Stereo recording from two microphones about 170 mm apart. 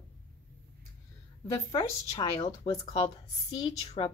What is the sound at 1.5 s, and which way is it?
A woman's voice, 20° left (ahead or behind).